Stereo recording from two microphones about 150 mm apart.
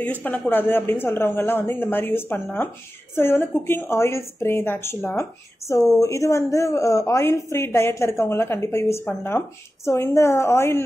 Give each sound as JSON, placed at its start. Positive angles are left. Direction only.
{"t": 0.0, "sound": "a woman's voice", "side_deg": 10}